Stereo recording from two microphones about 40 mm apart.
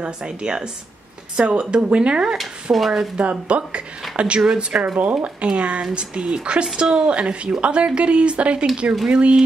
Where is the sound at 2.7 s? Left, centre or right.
Right.